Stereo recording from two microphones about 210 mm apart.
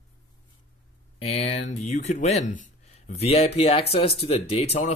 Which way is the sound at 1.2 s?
30° left (ahead or behind).